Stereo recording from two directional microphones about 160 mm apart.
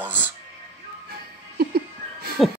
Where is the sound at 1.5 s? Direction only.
75° right (ahead or behind).